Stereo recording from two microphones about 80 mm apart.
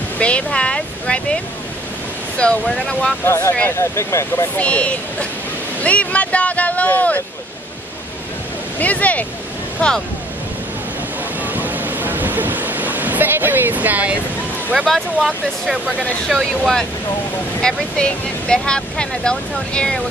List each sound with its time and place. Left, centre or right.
0.2 s speech: centre
3.3 s speech: left
4.6 s speech: centre
8.7 s speech: centre
11.4 s a sound: right
14.9 s speech: centre